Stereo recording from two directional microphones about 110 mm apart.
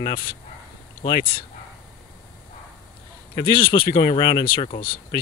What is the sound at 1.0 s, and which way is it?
Speech, 45° left (ahead or behind).